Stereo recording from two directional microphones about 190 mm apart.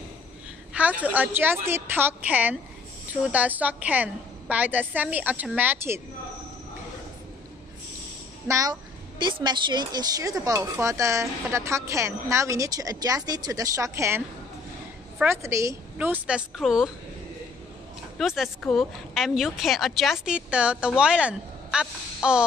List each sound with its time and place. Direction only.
0.7 s speech: 10° right (ahead or behind)
8.5 s speech: 15° right (ahead or behind)
15.2 s speech: 15° right (ahead or behind)
18.1 s speech: centre (ahead or behind)